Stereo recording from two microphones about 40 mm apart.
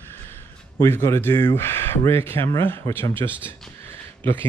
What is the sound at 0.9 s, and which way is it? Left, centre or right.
Speech, left.